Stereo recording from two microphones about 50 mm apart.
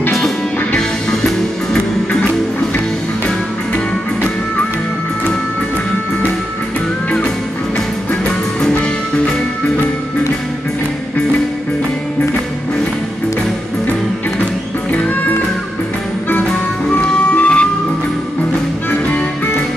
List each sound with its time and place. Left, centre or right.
3.7 s music: left
8.1 s music: centre
17.4 s music: left
18.9 s music: left